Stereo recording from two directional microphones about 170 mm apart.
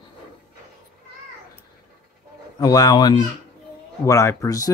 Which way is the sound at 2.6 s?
20° left (ahead or behind).